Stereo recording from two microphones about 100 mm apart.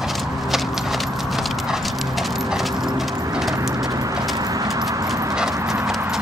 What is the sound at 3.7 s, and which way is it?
Horse, 35° right (ahead or behind).